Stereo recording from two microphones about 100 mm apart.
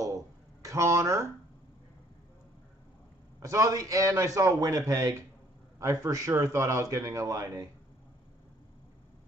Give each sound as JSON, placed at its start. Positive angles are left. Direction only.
{"t": 0.7, "sound": "a man's voice", "side_deg": -30}
{"t": 3.3, "sound": "a man's voice", "side_deg": -30}